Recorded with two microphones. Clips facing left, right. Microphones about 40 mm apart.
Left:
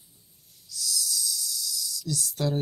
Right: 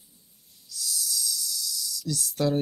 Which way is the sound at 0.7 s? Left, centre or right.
Right.